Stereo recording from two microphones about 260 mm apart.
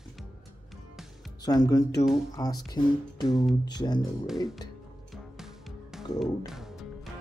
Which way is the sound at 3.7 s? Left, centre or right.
Centre.